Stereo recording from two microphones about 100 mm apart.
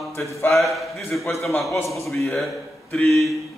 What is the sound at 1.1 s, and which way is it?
Speech, 10° left (ahead or behind).